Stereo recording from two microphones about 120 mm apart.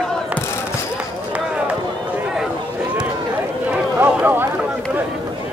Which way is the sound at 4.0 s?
15° right (ahead or behind).